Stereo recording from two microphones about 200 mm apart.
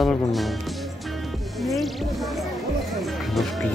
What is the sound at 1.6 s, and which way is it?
Music, centre (ahead or behind).